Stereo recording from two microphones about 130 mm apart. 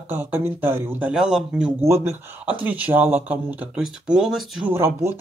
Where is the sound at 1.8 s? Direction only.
20° right (ahead or behind); by 4.7 s centre (ahead or behind).